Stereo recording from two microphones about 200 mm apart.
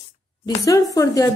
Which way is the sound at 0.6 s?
15° left (ahead or behind).